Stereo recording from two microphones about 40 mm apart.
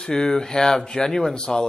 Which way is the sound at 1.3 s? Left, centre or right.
Left.